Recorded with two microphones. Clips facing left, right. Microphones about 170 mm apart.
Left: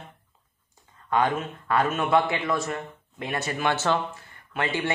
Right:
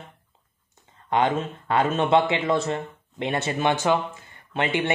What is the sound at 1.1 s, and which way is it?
Speech, 25° right (ahead or behind).